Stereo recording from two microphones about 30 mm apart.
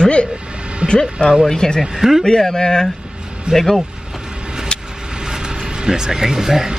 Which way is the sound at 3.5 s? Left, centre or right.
Right.